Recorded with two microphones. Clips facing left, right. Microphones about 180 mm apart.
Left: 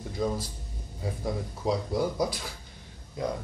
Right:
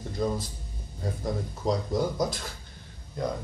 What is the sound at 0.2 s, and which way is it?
Speech, 5° left (ahead or behind).